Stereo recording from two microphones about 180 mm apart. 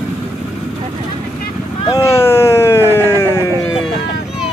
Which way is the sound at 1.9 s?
15° left (ahead or behind).